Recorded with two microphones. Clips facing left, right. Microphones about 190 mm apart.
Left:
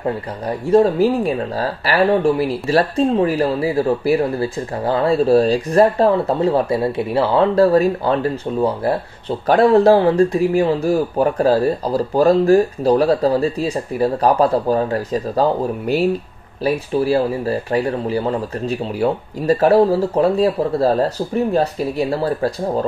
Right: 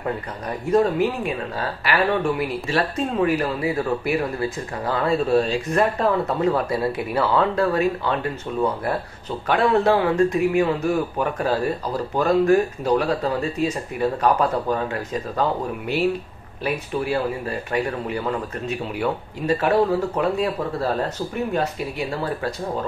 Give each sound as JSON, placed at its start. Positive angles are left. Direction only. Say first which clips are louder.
{"t": 0.7, "sound": "speech", "louder": "left 5 dB", "side_deg": 30}